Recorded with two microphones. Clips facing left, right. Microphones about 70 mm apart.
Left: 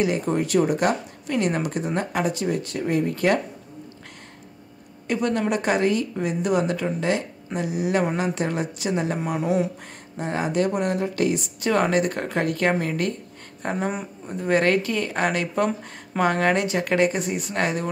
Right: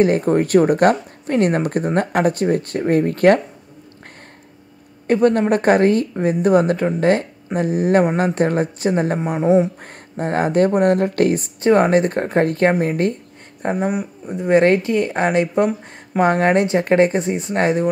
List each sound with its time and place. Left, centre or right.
0.0 s speech: right
5.0 s speech: right
10.1 s speech: right
13.8 s speech: centre
14.3 s speech: right